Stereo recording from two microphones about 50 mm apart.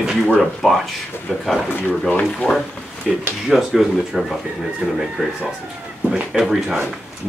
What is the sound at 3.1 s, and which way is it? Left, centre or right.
Speech, centre.